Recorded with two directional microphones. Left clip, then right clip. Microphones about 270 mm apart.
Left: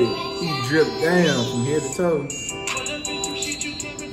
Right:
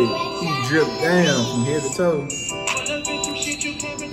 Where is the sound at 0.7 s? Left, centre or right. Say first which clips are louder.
Even; centre.